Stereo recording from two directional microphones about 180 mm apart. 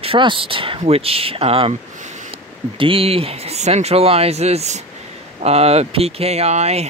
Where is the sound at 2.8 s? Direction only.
30° right (ahead or behind).